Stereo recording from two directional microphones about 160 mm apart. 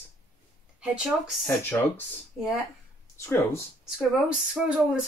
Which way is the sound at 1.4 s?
10° left (ahead or behind).